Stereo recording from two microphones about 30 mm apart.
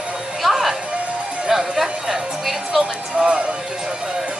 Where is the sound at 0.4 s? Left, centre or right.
Centre.